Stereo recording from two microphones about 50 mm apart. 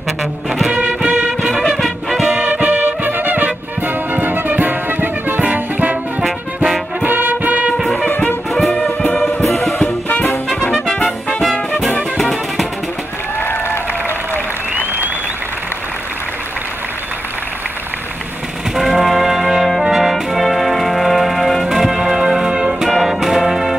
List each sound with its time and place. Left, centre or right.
0.2 s music: centre
0.7 s music: right
1.6 s music: centre
2.4 s music: right
5.4 s music: right
7.0 s brass instrument: right
8.1 s music: left
8.5 s music: centre
9.7 s music: left
12.2 s music: centre
13.4 s applause: left
14.7 s applause: right
18.8 s brass instrument: centre
22.8 s music: centre